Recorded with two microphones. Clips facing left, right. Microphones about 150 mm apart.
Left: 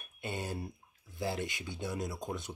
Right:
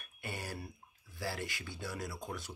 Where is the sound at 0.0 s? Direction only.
20° left (ahead or behind).